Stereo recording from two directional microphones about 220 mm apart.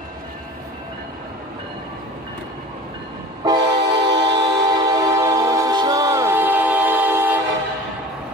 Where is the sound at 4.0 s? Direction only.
50° right (ahead or behind).